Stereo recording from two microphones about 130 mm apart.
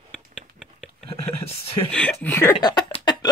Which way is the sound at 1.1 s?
50° left (ahead or behind).